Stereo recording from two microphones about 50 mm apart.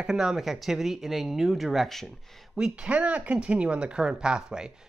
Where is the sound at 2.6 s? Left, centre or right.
Centre.